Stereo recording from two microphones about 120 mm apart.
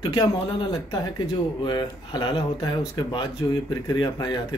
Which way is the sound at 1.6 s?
40° left (ahead or behind).